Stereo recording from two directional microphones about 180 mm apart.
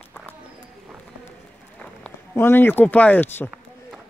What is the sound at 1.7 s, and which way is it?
A man's voice, 5° left (ahead or behind).